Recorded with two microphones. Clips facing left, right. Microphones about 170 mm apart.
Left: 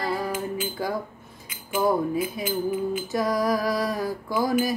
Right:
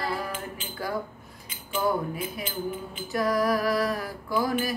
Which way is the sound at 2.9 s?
20° left (ahead or behind).